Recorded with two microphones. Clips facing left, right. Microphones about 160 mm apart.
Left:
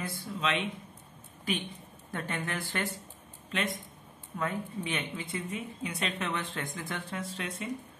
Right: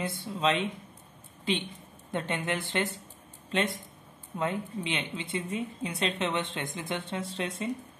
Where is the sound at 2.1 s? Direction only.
20° right (ahead or behind).